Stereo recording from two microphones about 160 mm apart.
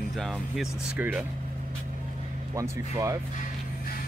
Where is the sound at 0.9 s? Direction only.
10° right (ahead or behind).